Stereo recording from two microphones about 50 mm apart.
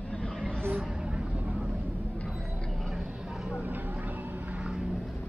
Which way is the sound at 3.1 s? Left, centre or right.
Centre.